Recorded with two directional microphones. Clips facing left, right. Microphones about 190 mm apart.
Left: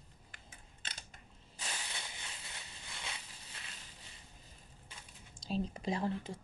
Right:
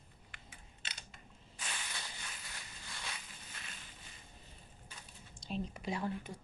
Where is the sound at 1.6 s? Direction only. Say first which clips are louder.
Left 1 dB; 25° left (ahead or behind).